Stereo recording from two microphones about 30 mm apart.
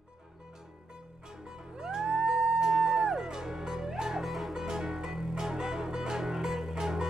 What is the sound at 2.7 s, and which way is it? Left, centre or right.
Music, centre.